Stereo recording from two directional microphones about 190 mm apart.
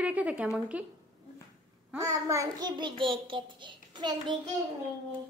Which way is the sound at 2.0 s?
15° right (ahead or behind).